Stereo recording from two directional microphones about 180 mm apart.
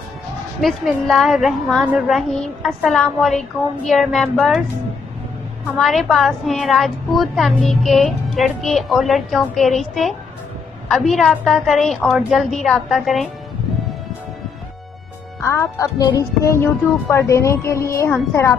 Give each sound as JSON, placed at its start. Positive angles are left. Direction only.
{"t": 0.6, "sound": "a woman's voice", "side_deg": 0}
{"t": 5.8, "sound": "a woman's voice", "side_deg": 0}
{"t": 15.4, "sound": "speech", "side_deg": 15}